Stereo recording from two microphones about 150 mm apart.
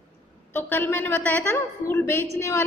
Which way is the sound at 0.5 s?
15° left (ahead or behind).